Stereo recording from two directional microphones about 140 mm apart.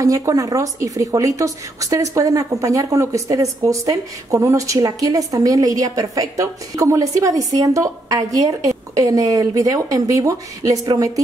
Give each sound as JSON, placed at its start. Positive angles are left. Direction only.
{"t": 0.0, "sound": "a woman's voice", "side_deg": -25}